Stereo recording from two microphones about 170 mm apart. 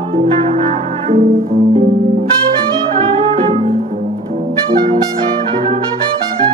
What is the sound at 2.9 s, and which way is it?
Music, 35° right (ahead or behind).